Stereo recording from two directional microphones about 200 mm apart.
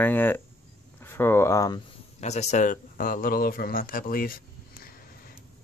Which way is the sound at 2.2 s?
35° left (ahead or behind).